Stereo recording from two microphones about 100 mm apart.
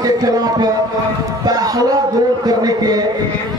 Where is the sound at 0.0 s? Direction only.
40° right (ahead or behind).